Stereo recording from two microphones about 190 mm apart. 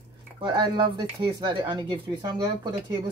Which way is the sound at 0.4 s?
25° right (ahead or behind).